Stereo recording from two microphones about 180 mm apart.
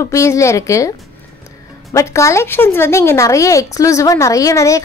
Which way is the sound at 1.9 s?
15° left (ahead or behind).